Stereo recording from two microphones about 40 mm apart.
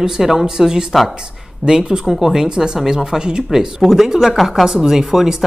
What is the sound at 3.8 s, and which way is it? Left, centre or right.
Speech, centre.